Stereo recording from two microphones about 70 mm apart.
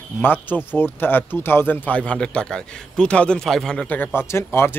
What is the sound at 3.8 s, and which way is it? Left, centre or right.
Speech, left.